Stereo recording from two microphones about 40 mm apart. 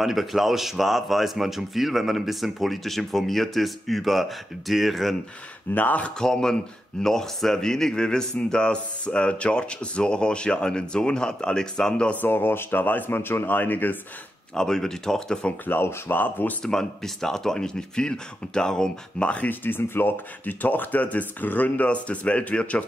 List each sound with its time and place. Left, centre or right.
0.0 s speech: centre
5.8 s speech: left
6.1 s speech: centre
12.2 s speech: left
14.5 s speech: centre
15.6 s speech: left
16.6 s speech: centre; by 19.4 s left
19.6 s speech: left
21.8 s speech: left